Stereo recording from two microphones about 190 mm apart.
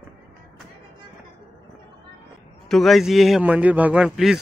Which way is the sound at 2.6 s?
Centre (ahead or behind).